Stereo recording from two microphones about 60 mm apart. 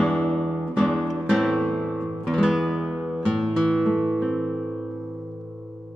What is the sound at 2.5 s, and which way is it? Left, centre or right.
Music, centre.